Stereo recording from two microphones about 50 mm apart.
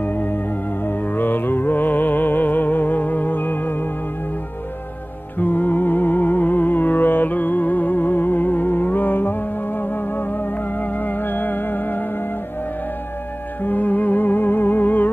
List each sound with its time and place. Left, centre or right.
0.0 s music: left
5.4 s music: left
13.7 s music: left